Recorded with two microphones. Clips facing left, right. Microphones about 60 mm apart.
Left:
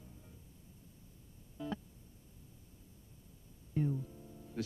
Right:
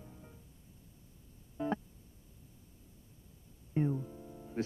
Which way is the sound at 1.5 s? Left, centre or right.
Right.